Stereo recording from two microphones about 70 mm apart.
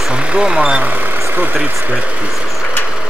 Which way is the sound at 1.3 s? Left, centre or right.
Right.